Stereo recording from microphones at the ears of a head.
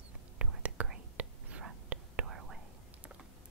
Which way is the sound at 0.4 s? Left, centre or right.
Right.